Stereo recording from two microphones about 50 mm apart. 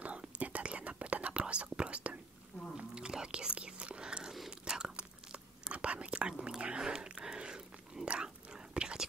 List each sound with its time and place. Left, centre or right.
0.0 s whispering: right